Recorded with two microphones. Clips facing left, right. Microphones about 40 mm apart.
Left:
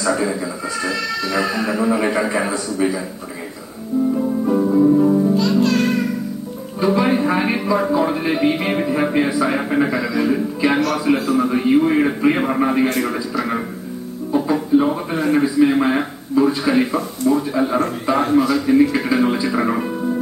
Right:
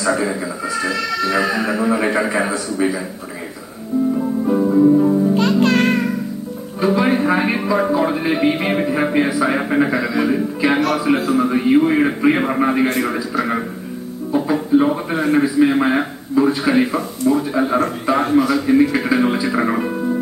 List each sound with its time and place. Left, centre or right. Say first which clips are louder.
0.0 s a man's voice: right 1 dB; centre
4.5 s music: right 2 dB; centre
5.3 s music: right 1 dB; right
6.8 s a man's voice: right 1 dB; centre
14.3 s a man's voice: even; centre